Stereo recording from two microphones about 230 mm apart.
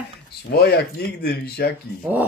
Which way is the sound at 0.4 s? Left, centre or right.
Left.